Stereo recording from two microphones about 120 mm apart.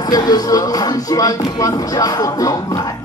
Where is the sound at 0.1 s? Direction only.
30° left (ahead or behind).